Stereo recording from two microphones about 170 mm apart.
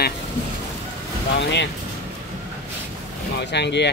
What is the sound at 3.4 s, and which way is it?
Speech, 85° left.